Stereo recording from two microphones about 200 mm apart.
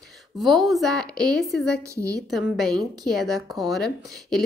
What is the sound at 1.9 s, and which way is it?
Speech, 15° right (ahead or behind).